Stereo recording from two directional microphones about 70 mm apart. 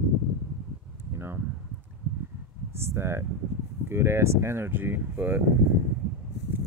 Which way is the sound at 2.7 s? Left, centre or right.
Right.